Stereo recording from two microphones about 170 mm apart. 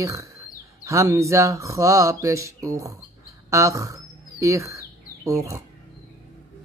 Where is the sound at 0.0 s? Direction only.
20° right (ahead or behind).